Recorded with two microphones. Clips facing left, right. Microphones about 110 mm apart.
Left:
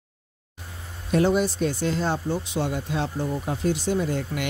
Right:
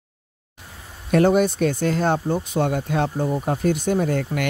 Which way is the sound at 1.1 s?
55° right (ahead or behind).